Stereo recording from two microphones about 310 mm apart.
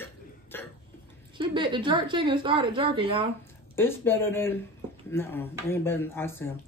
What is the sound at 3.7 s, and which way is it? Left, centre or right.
Speech, centre.